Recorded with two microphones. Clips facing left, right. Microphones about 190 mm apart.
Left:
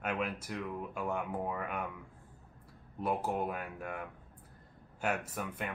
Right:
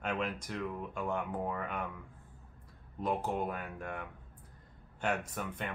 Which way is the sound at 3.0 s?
5° left (ahead or behind).